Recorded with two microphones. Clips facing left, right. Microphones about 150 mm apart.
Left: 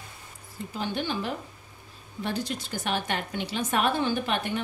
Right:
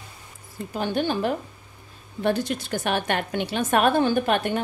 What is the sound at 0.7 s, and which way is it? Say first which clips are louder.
A woman's voice: right 6 dB; 50° right (ahead or behind).